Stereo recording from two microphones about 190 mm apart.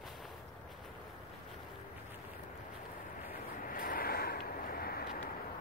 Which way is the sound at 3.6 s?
50° left (ahead or behind).